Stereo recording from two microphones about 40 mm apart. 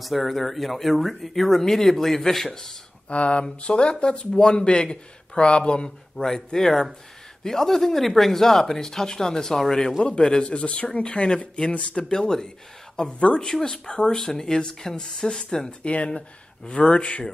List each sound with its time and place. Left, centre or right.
0.0 s speech: centre
3.1 s speech: left
6.1 s speech: centre
10.0 s speech: left
12.1 s speech: centre
15.8 s speech: left